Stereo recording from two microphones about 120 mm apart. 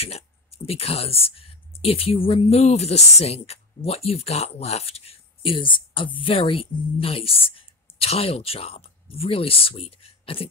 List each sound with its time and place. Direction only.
0.7 s speech: 55° left (ahead or behind)